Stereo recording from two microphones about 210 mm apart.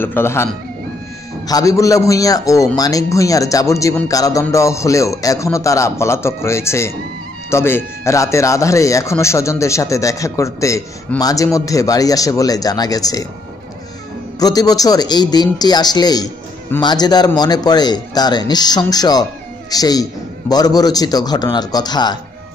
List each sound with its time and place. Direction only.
0.0 s speech: 10° left (ahead or behind)
1.5 s speech: 15° left (ahead or behind)
14.4 s a man's voice: 20° left (ahead or behind)